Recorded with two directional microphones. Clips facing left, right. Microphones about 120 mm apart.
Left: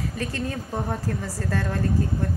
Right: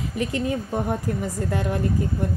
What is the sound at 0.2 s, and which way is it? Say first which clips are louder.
A woman's voice: right 8 dB; 15° right (ahead or behind).